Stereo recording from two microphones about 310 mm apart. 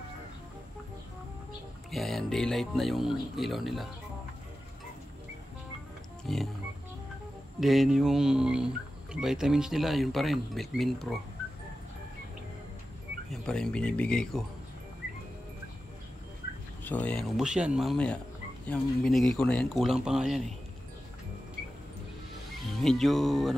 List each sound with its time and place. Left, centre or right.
1.9 s speech: centre
6.2 s speech: centre
7.6 s speech: centre
13.3 s speech: centre
16.8 s speech: centre
22.5 s speech: centre